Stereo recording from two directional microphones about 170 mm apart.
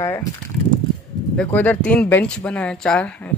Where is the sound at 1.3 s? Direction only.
10° left (ahead or behind).